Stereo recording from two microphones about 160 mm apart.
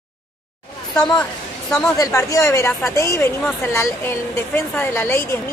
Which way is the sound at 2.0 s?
20° left (ahead or behind).